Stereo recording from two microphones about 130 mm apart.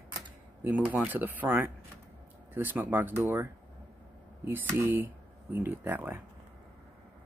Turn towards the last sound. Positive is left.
turn(degrees=-15)  # may be behind; listen again after turning